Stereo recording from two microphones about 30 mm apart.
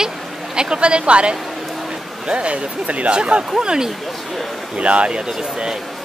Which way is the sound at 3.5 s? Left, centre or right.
Right.